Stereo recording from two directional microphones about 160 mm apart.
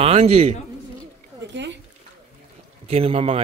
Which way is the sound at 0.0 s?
40° right (ahead or behind).